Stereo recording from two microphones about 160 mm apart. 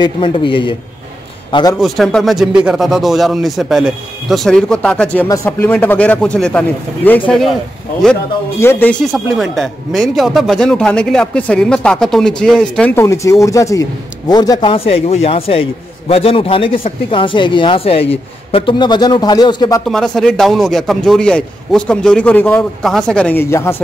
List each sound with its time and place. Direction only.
0.0 s a man's voice: 30° left (ahead or behind)
1.8 s a man's voice: centre (ahead or behind)
8.5 s speech: 15° left (ahead or behind)
9.0 s speech: centre (ahead or behind); by 19.8 s 25° left (ahead or behind)
19.9 s a man's voice: centre (ahead or behind)